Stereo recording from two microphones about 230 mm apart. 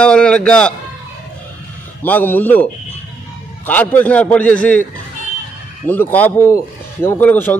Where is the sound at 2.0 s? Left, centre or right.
Centre.